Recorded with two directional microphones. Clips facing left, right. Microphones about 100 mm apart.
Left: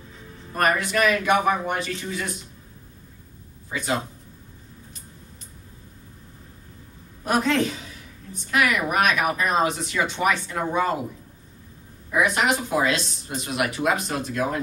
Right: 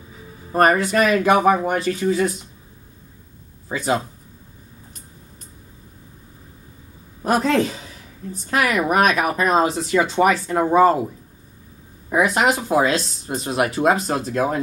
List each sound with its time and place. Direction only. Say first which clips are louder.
0.5 s speech: right 6 dB; 35° right (ahead or behind)
3.6 s speech: right 5 dB; 40° right (ahead or behind)
7.2 s speech: right 4 dB; 35° right (ahead or behind)
12.1 s speech: right 4 dB; 35° right (ahead or behind)